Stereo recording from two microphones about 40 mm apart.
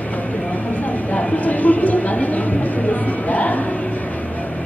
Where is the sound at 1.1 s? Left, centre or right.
Left.